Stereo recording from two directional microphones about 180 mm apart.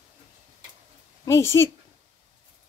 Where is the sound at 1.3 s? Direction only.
15° left (ahead or behind).